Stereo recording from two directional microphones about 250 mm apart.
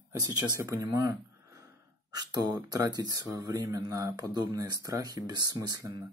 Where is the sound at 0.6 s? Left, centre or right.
Centre.